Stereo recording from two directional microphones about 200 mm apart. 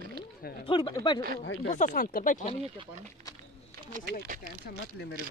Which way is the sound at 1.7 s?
40° left (ahead or behind).